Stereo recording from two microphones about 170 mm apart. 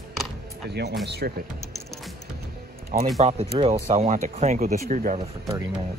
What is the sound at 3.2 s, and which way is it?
Speech, 35° right (ahead or behind).